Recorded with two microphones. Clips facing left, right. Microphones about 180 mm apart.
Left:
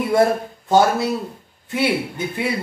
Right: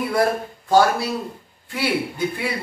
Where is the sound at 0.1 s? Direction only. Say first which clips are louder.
Left 6 dB; 25° left (ahead or behind).